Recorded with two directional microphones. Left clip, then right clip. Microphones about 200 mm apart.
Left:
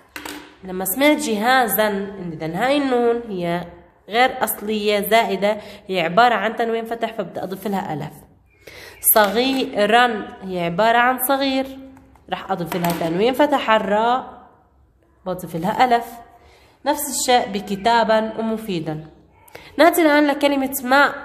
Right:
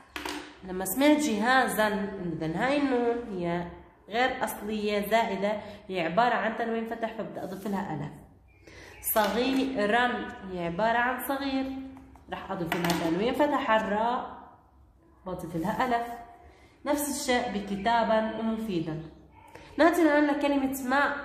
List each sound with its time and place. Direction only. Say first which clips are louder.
0.7 s a woman's voice: left 7 dB; 30° left (ahead or behind); by 14.2 s 55° left (ahead or behind)
15.2 s a woman's voice: left 9 dB; 50° left (ahead or behind)